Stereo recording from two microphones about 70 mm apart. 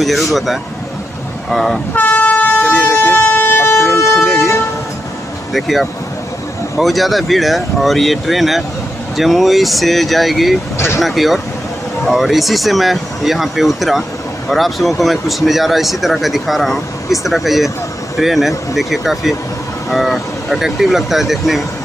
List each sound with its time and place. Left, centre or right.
0.0 s speech: centre
2.0 s vehicle: left
2.6 s air horn: centre
3.0 s vehicle: left
4.2 s vehicle: centre
5.5 s speech: centre